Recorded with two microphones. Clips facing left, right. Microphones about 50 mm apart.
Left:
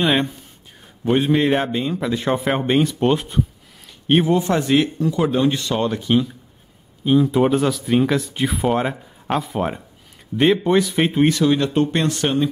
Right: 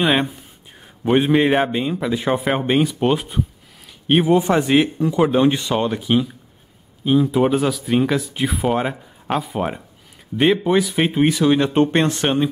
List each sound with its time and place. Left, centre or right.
0.0 s speech: centre
4.4 s speech: centre
11.5 s speech: right